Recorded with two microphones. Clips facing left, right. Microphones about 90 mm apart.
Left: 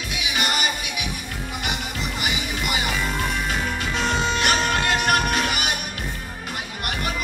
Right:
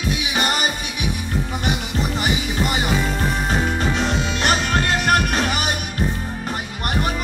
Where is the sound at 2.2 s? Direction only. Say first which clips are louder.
Right 5 dB; 40° right (ahead or behind).